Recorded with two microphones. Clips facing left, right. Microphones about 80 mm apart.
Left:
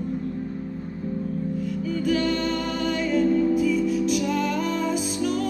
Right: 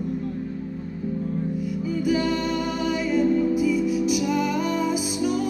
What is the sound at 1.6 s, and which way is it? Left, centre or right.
Music, centre.